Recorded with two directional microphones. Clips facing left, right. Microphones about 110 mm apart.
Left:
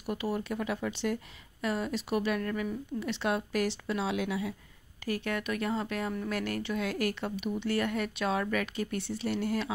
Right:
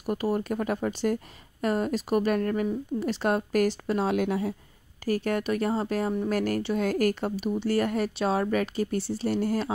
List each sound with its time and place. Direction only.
0.0 s speech: 45° right (ahead or behind)